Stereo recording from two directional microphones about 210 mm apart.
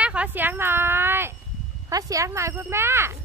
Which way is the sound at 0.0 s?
5° right (ahead or behind).